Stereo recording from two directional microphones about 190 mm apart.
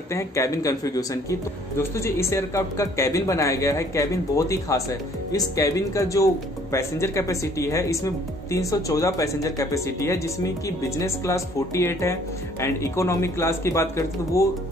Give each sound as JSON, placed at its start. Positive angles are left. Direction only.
{"t": 0.1, "sound": "speech", "side_deg": 15}